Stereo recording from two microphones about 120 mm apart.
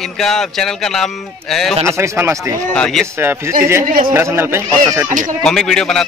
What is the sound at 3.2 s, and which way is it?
Speech, 20° right (ahead or behind).